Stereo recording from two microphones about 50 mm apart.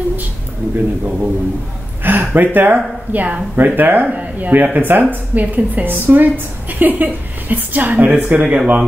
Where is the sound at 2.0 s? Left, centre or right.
Right.